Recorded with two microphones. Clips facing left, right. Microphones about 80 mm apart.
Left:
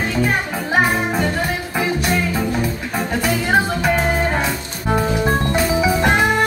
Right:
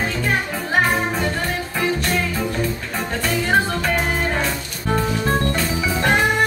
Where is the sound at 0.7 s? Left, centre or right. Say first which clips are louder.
Left 2 dB; centre.